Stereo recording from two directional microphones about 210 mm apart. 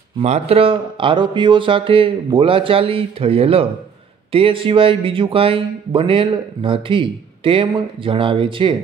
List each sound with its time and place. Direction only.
0.2 s speech: 30° right (ahead or behind)